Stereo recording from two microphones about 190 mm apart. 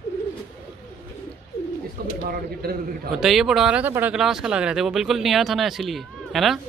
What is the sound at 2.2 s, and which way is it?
Speech, 50° right (ahead or behind).